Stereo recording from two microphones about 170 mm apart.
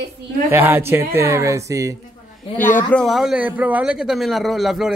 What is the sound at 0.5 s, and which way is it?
A man's voice, 10° right (ahead or behind).